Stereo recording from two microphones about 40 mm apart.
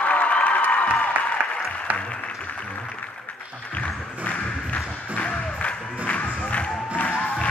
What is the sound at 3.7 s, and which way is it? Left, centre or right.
Music, left.